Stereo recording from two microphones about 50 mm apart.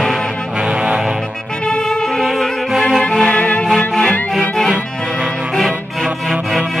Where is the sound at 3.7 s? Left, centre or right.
Centre.